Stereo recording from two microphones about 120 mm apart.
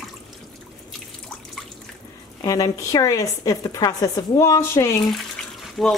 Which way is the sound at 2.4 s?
30° left (ahead or behind).